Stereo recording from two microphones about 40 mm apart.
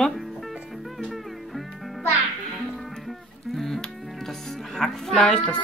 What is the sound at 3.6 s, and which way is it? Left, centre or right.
Music, centre.